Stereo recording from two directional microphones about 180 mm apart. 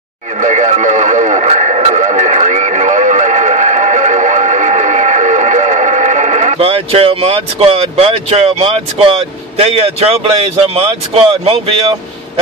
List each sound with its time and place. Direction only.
0.4 s radio: 40° right (ahead or behind)